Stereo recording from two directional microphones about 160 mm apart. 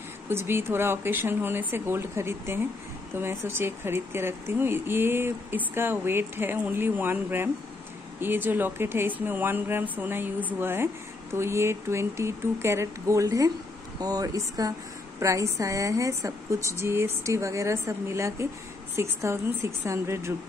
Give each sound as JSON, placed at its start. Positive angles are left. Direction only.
{"t": 0.3, "sound": "a woman's voice", "side_deg": -15}